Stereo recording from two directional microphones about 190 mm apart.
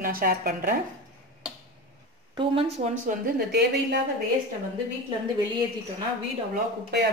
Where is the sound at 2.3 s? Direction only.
30° right (ahead or behind).